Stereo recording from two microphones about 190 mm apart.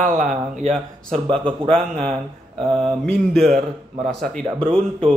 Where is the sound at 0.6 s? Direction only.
30° right (ahead or behind).